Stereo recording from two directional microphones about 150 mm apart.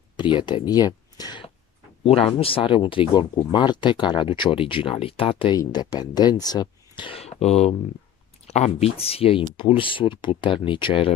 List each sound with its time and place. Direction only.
0.2 s speech: 30° left (ahead or behind)
2.0 s speech: 40° left (ahead or behind)
5.6 s speech: 25° left (ahead or behind)